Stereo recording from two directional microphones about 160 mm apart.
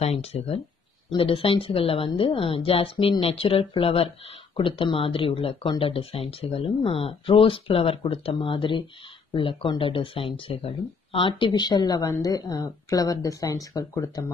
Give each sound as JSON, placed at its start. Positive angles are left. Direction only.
{"t": 0.0, "sound": "a woman's voice", "side_deg": 40}